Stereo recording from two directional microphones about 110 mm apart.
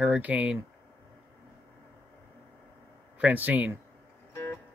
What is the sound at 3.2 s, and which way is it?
Speech, 15° right (ahead or behind).